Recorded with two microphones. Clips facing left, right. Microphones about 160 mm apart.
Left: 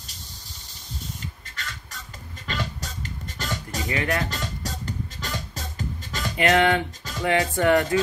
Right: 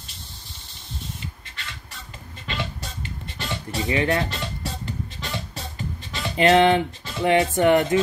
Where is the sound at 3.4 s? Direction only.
40° left (ahead or behind).